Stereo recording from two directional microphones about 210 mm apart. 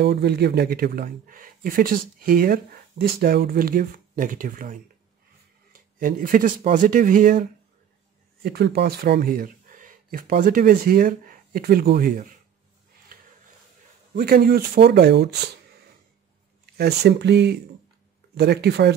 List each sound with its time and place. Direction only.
0.0 s speech: 50° right (ahead or behind)
8.4 s speech: 50° right (ahead or behind)
13.1 s a sound: 45° right (ahead or behind)
14.1 s speech: 45° right (ahead or behind)
16.7 s speech: 50° right (ahead or behind)